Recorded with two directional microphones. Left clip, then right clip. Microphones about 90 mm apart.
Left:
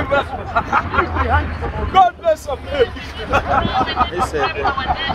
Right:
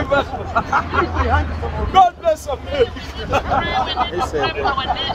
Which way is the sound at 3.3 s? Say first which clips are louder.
Left 2 dB; 30° right (ahead or behind).